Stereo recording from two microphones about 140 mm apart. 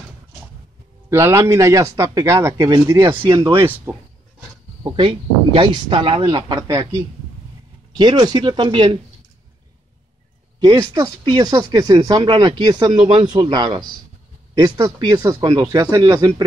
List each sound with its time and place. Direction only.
1.1 s speech: 20° right (ahead or behind)
3.5 s speech: 15° right (ahead or behind)
4.8 s speech: 35° right (ahead or behind)
8.0 s speech: 35° right (ahead or behind)
10.6 s speech: 25° right (ahead or behind)